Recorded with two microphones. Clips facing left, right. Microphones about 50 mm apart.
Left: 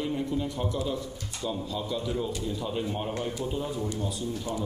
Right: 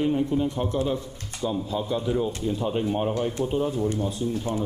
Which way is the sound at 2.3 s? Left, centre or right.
Right.